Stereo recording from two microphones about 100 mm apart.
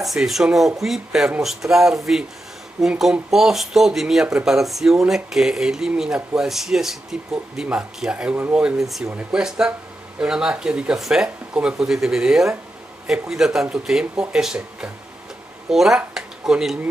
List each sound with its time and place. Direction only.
0.0 s speech: centre (ahead or behind)
8.4 s speech: 20° right (ahead or behind)
8.6 s speech: 5° right (ahead or behind)
16.2 s a sound: 5° right (ahead or behind)